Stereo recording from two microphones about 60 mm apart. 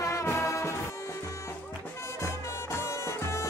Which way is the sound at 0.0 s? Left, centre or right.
Left.